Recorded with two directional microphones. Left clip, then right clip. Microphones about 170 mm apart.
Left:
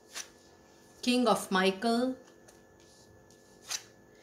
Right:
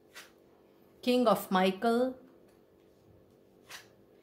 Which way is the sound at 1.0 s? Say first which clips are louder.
Right 1 dB; 40° right (ahead or behind).